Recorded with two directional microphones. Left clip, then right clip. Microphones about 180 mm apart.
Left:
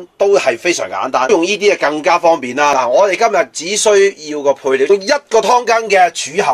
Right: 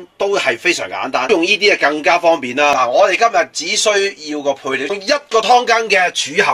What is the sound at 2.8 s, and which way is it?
Speech, 40° left (ahead or behind).